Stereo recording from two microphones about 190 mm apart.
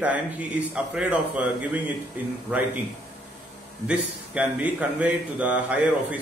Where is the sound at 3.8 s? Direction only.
5° right (ahead or behind).